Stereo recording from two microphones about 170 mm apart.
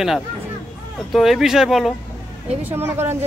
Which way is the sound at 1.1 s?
Centre (ahead or behind).